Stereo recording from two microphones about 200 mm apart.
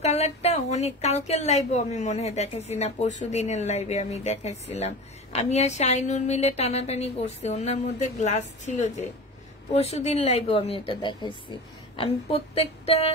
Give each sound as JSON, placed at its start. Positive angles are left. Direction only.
{"t": 0.0, "sound": "speech", "side_deg": 35}